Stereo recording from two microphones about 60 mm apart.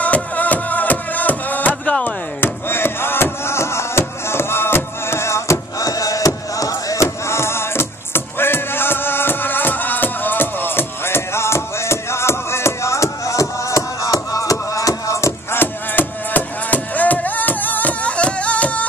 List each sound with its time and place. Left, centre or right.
0.0 s music: left
2.0 s chop: left
5.8 s a sound: left
7.2 s music: left
15.6 s music: left